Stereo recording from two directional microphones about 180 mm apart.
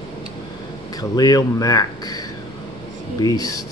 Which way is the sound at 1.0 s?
20° left (ahead or behind).